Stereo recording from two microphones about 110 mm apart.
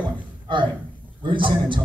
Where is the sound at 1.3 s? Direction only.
50° right (ahead or behind).